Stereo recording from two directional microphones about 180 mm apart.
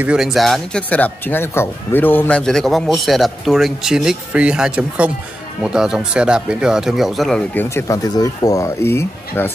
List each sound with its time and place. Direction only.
0.0 s speech: 5° right (ahead or behind)
7.7 s speech: 20° left (ahead or behind)